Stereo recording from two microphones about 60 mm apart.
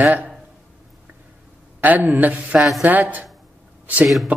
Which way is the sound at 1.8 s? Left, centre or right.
Right.